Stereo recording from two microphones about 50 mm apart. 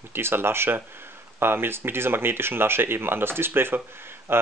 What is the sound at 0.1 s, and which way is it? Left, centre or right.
Speech, right.